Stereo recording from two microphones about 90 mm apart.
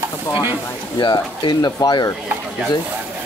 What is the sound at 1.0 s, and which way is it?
Speech, 55° left (ahead or behind).